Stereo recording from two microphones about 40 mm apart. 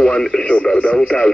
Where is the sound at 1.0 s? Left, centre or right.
Left.